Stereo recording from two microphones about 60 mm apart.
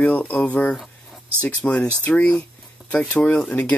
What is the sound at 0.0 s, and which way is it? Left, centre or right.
Speech, left.